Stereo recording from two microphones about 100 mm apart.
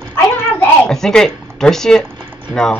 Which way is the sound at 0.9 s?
5° left (ahead or behind).